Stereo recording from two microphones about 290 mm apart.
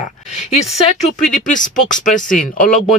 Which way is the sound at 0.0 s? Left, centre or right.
Left.